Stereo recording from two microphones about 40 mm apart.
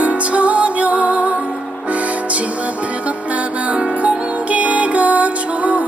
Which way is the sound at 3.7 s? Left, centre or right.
Right.